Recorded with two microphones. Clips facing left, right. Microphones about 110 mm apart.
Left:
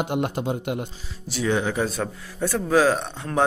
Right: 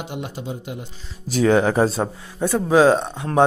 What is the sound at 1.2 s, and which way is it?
Speech, 45° right (ahead or behind).